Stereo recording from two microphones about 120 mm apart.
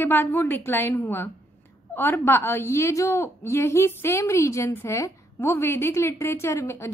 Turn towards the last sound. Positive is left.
turn(degrees=25)  # may be behind; listen again after turning